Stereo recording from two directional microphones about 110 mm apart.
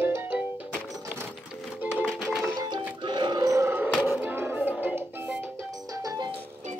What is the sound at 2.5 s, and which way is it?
Music, 40° right (ahead or behind).